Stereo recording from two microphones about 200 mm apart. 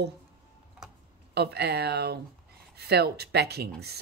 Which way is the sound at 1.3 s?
55° right (ahead or behind).